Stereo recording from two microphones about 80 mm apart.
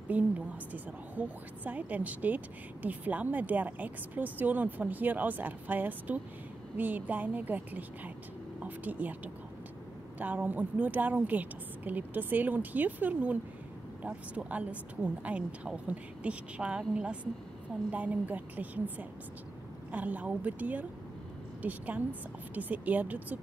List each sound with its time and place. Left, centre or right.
0.1 s a woman's voice: centre